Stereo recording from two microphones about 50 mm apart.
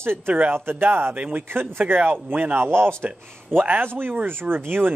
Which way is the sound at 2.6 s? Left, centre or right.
Right.